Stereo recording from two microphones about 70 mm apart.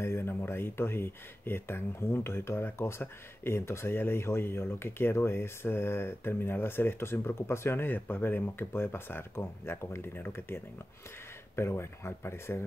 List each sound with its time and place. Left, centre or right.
0.0 s speech: left